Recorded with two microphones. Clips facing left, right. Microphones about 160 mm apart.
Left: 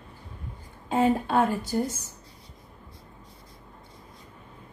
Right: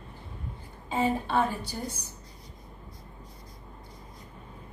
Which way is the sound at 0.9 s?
55° left (ahead or behind).